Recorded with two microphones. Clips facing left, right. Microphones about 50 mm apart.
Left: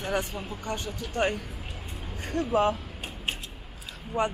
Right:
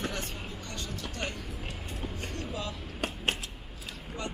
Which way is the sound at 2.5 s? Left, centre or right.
Left.